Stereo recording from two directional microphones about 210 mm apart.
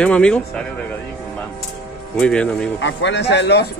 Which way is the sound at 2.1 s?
5° left (ahead or behind).